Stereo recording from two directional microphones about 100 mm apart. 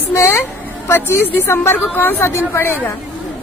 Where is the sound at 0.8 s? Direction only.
20° left (ahead or behind).